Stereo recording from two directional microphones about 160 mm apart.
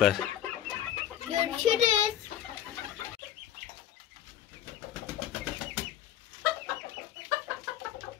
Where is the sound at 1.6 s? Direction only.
50° right (ahead or behind).